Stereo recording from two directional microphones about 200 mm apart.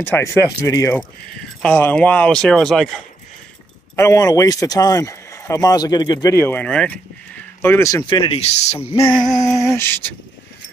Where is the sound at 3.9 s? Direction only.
15° left (ahead or behind); by 9.0 s 30° left (ahead or behind).